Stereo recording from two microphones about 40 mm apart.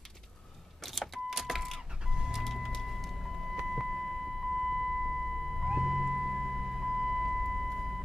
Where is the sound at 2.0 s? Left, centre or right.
Centre.